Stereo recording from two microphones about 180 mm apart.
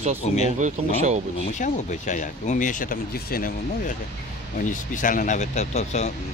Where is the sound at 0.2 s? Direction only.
40° left (ahead or behind).